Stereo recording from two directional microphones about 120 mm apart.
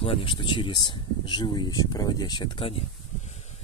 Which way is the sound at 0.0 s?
45° left (ahead or behind).